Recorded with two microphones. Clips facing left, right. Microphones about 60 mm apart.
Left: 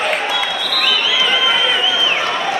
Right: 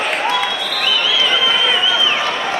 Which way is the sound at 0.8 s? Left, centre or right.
Centre.